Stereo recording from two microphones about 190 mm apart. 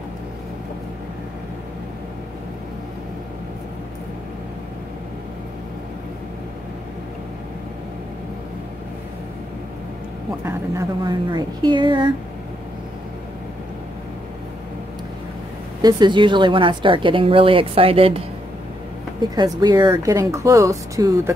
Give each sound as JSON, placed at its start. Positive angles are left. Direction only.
{"t": 10.4, "sound": "a woman's voice", "side_deg": -20}
{"t": 15.8, "sound": "a woman's voice", "side_deg": -25}
{"t": 19.3, "sound": "speech", "side_deg": -20}